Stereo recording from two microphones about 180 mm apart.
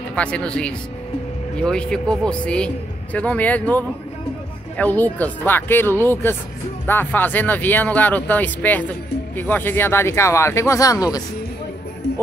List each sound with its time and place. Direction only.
0.1 s a man's voice: 5° left (ahead or behind)